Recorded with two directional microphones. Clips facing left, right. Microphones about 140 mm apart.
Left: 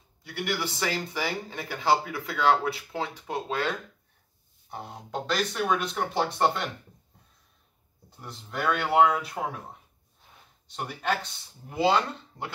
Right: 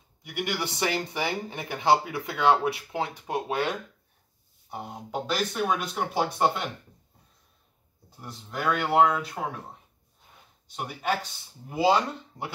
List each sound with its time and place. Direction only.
0.2 s speech: 20° right (ahead or behind)
8.2 s speech: centre (ahead or behind)
10.8 s speech: 5° right (ahead or behind)